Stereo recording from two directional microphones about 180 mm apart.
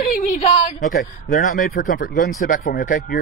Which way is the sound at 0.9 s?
45° left (ahead or behind).